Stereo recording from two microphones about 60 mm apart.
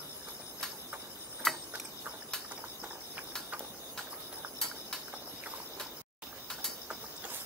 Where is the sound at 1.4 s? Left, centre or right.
Centre.